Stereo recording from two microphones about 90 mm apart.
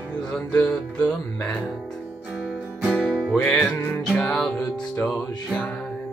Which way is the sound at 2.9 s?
15° left (ahead or behind).